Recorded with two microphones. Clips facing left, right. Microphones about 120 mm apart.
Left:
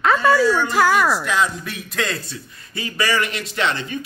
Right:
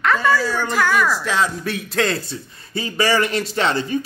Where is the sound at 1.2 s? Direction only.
30° right (ahead or behind).